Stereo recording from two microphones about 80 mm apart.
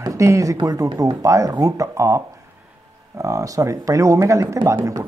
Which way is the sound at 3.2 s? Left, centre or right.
Right.